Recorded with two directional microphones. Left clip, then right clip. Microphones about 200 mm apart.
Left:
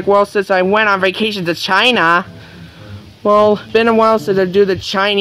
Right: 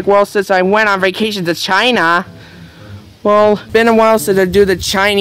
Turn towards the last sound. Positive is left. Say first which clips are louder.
# right 2 dB
turn(degrees=-25)  # may be behind; listen again after turning